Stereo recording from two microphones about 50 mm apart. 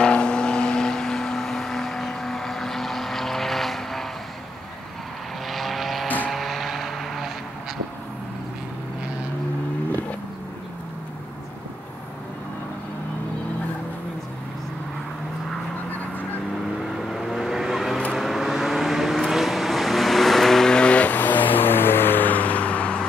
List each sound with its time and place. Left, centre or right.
0.0 s vehicle: centre
5.5 s vehicle: centre
6.0 s vehicle: left
6.3 s vehicle: centre
15.9 s honk: left
16.9 s vehicle: centre; by 21.2 s left
21.2 s vehicle: left